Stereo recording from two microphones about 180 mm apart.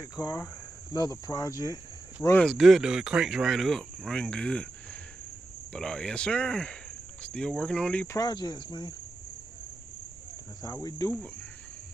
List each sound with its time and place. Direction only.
0.0 s cricket: 20° left (ahead or behind)
2.2 s speech: 5° left (ahead or behind)
5.7 s speech: 5° left (ahead or behind)
8.2 s cricket: 25° left (ahead or behind)
10.6 s cricket: 20° left (ahead or behind)